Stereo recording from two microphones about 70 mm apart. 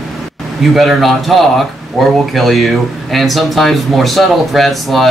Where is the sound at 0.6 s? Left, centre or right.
Centre.